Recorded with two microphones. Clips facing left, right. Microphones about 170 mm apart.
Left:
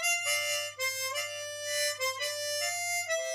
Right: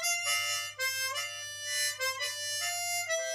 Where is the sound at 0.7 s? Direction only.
25° left (ahead or behind).